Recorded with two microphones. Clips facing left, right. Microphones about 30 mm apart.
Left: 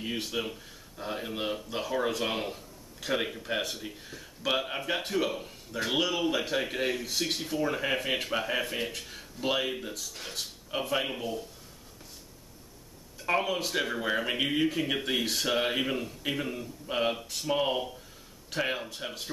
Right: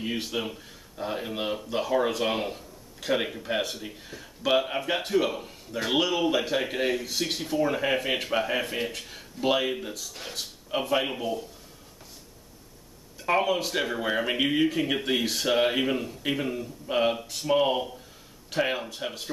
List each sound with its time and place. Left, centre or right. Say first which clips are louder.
0.0 s speech: right 3 dB; centre
13.2 s speech: right 4 dB; centre